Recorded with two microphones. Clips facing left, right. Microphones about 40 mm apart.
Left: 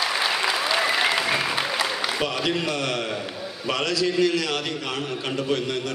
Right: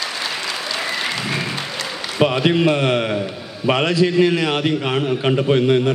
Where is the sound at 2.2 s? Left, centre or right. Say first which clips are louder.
Right 13 dB; right.